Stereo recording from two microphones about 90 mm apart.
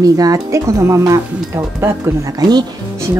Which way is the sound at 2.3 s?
50° right (ahead or behind).